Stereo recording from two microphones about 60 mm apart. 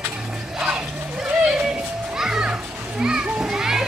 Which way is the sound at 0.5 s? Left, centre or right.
Centre.